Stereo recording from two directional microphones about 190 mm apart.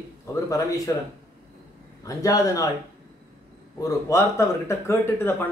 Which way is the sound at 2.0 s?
15° left (ahead or behind).